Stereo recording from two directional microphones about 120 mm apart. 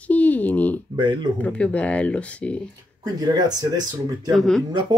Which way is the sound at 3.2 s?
35° right (ahead or behind).